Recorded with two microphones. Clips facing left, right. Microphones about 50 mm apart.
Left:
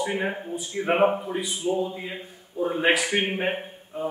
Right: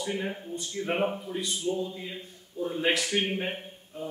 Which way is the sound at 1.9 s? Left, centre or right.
Left.